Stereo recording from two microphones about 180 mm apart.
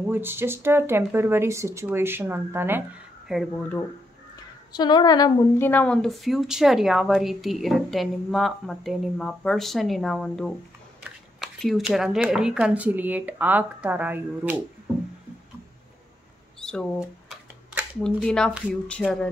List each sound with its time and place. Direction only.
0.1 s speech: 10° right (ahead or behind)
3.3 s speech: centre (ahead or behind)
4.7 s a woman's voice: 25° left (ahead or behind)
5.7 s speech: 10° left (ahead or behind); by 14.6 s 10° right (ahead or behind)
18.0 s speech: 5° left (ahead or behind)